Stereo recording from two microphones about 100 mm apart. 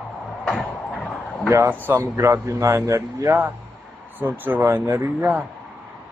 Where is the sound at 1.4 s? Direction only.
20° right (ahead or behind).